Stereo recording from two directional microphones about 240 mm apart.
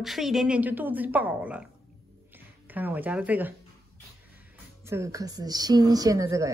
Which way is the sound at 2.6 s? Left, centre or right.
Centre.